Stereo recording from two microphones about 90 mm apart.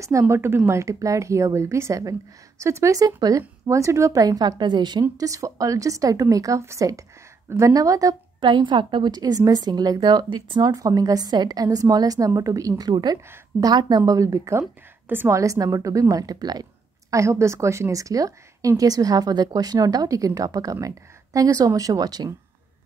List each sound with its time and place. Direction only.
0.0 s a woman's voice: 30° right (ahead or behind); by 5.0 s 55° right (ahead or behind)
5.1 s a woman's voice: 40° right (ahead or behind)
8.4 s a woman's voice: 60° right (ahead or behind)
10.6 s a woman's voice: 45° right (ahead or behind)
14.6 s a woman's voice: 20° right (ahead or behind)
15.3 s a woman's voice: 40° right (ahead or behind)
17.1 s a woman's voice: 35° right (ahead or behind)